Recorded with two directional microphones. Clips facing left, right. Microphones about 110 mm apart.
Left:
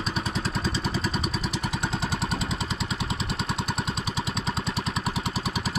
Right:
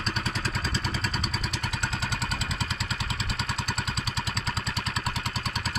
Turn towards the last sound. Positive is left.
turn(degrees=5)  # may be behind; listen again after turning